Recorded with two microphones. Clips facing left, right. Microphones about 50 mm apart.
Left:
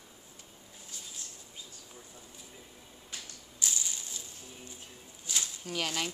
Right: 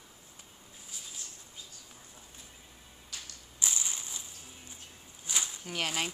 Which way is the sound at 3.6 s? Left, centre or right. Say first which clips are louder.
Right 1 dB; right.